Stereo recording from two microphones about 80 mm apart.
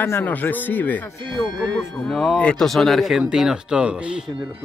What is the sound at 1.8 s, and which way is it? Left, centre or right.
Speech, centre.